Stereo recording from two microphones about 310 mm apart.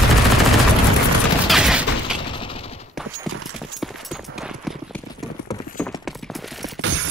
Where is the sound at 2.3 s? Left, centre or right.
Centre.